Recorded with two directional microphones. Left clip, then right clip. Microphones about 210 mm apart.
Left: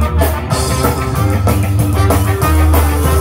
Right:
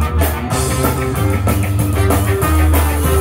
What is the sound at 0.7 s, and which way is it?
Music, 15° left (ahead or behind).